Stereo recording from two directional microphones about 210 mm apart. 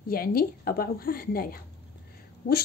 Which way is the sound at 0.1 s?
45° left (ahead or behind).